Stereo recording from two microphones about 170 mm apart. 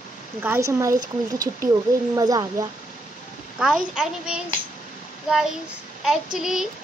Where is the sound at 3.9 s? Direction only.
5° right (ahead or behind).